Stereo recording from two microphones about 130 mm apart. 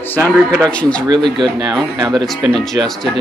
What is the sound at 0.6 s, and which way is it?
Speech, 10° left (ahead or behind).